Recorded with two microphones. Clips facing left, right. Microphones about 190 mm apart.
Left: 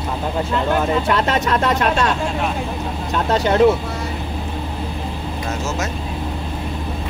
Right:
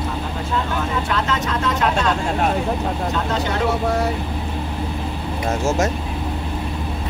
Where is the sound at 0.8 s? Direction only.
65° left (ahead or behind).